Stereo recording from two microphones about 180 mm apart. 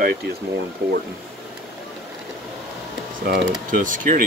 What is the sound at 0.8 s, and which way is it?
Speech, 65° right (ahead or behind).